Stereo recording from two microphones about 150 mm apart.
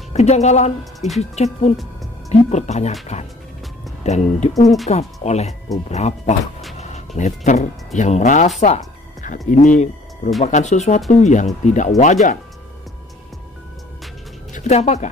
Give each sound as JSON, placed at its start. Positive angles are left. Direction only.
{"t": 0.1, "sound": "speech", "side_deg": 50}
{"t": 14.5, "sound": "speech", "side_deg": 50}